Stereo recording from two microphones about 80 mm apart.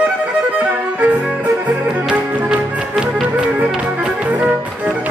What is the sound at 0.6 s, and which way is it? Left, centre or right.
Music, centre.